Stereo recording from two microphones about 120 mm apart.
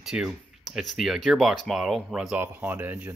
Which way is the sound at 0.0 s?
5° right (ahead or behind).